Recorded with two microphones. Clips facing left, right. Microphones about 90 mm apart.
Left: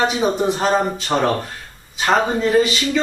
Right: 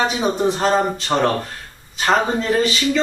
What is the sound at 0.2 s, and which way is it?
Speech, centre (ahead or behind).